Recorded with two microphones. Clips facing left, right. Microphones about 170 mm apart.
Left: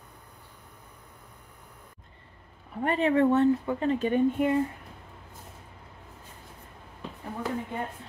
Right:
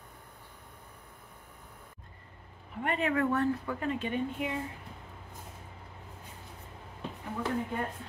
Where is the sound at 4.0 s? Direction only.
45° left (ahead or behind).